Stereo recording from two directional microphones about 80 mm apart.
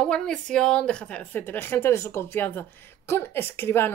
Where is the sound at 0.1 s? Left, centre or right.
Centre.